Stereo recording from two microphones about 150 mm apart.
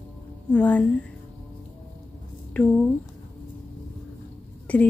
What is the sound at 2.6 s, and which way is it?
Speech, 10° left (ahead or behind).